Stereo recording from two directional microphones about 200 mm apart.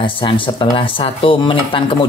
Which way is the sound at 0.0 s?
25° left (ahead or behind).